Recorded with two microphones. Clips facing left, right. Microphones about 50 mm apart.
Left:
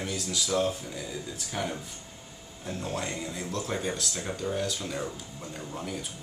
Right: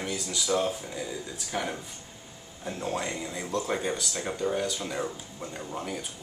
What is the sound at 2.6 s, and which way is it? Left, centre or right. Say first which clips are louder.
Speech: right 2 dB; centre.